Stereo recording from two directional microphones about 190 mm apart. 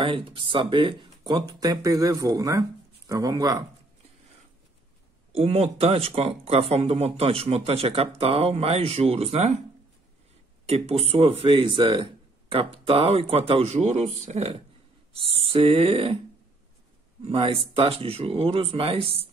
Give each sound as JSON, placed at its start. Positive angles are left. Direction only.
{"t": 0.0, "sound": "speech", "side_deg": -25}
{"t": 5.3, "sound": "speech", "side_deg": -30}
{"t": 10.7, "sound": "speech", "side_deg": -30}
{"t": 17.2, "sound": "speech", "side_deg": -30}